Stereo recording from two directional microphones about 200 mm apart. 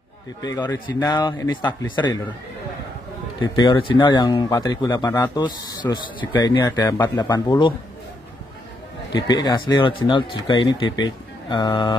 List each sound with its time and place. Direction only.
0.4 s a man's voice: 15° left (ahead or behind)
3.3 s speech: 15° left (ahead or behind)
9.1 s speech: 20° left (ahead or behind)